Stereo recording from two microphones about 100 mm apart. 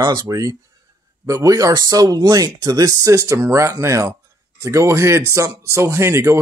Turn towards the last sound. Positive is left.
turn(degrees=-30)  # may be behind; listen again after turning